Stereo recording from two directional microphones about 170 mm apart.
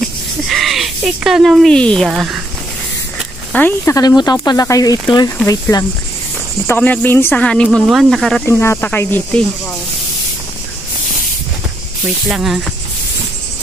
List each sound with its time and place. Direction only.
0.5 s speech: centre (ahead or behind)
3.5 s speech: 15° left (ahead or behind)
6.7 s speech: 10° left (ahead or behind)
8.5 s speech: 15° left (ahead or behind)
12.3 s speech: 5° right (ahead or behind)